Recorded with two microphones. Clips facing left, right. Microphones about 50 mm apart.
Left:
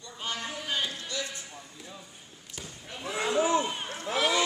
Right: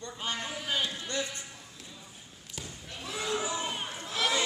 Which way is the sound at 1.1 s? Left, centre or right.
Right.